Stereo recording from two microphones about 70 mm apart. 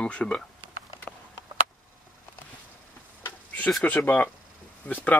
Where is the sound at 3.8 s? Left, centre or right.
Left.